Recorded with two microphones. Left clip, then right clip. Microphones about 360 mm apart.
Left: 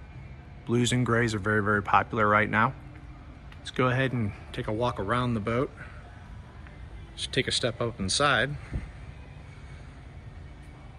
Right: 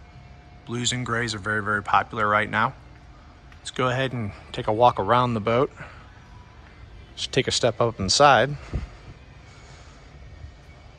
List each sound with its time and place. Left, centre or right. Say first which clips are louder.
0.7 s speech: even; centre
7.2 s speech: right 5 dB; centre